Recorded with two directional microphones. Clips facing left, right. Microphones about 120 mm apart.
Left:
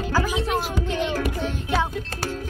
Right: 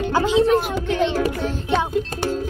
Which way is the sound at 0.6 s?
55° right (ahead or behind).